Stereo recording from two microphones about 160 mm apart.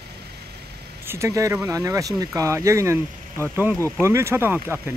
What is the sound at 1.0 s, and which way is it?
Speech, 15° right (ahead or behind).